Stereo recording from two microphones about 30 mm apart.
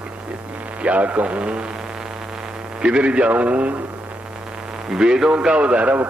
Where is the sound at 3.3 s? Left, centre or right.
Right.